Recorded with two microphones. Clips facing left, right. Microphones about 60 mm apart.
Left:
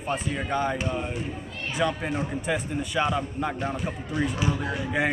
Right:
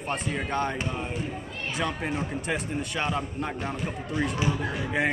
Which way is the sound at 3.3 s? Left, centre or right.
Centre.